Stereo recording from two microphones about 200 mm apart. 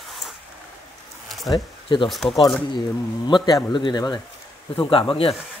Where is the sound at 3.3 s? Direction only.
20° left (ahead or behind).